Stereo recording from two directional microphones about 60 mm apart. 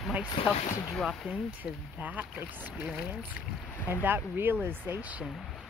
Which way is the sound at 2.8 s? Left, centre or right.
Centre.